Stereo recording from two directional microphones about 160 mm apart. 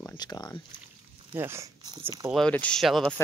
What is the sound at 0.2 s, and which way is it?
Speech, 25° left (ahead or behind).